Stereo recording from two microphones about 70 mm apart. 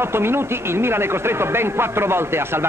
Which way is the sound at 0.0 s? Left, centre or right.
Right.